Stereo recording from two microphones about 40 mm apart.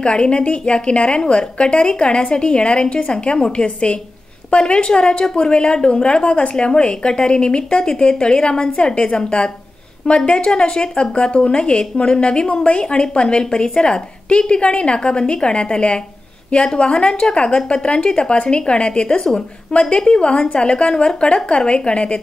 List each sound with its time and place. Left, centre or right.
0.0 s a woman's voice: left